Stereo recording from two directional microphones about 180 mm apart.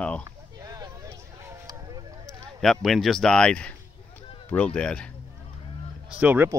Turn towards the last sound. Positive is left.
turn(degrees=-10)  # may be behind; listen again after turning